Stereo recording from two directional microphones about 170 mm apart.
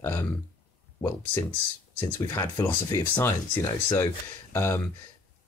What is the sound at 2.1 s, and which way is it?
Speech, 25° left (ahead or behind).